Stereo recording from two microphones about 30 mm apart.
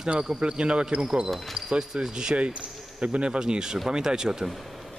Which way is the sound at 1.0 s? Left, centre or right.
Right.